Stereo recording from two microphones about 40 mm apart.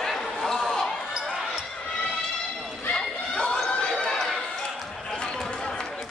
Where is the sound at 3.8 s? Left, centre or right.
Centre.